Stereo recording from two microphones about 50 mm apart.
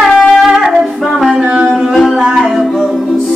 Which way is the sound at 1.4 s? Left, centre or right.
Right.